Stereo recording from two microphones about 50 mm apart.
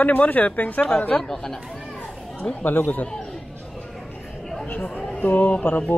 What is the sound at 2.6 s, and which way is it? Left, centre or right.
Speech, left.